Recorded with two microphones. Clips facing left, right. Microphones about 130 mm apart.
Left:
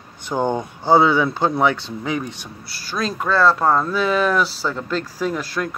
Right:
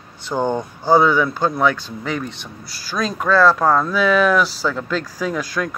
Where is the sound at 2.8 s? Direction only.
Centre (ahead or behind).